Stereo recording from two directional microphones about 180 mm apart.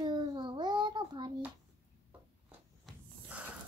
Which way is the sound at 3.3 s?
10° right (ahead or behind).